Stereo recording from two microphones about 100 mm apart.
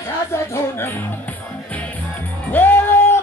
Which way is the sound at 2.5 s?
20° left (ahead or behind).